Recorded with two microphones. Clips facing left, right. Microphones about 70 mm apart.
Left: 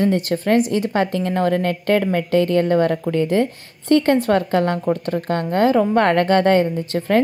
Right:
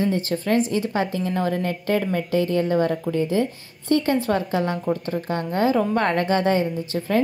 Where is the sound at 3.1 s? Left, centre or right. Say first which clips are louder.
Left 4 dB; left.